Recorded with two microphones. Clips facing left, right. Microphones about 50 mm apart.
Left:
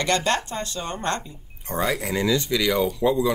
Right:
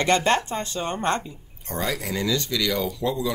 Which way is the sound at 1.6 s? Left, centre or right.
Centre.